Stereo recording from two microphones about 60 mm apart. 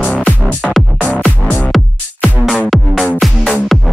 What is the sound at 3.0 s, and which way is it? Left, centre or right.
Music, centre.